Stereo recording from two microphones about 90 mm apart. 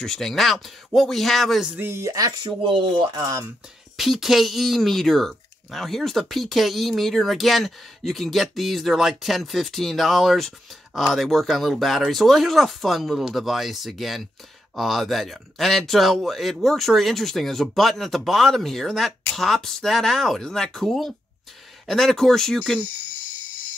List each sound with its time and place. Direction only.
0.0 s speech: 5° left (ahead or behind)
1.8 s speech: 30° right (ahead or behind)
2.6 s speech: 65° right (ahead or behind)
3.9 s speech: centre (ahead or behind)